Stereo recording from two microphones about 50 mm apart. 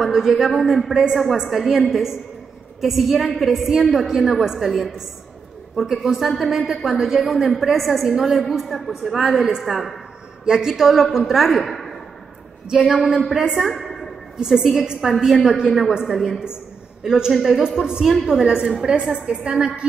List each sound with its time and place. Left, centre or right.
0.0 s a woman's voice: centre
10.4 s a woman's voice: centre
13.7 s a sound: centre
14.3 s a woman's voice: centre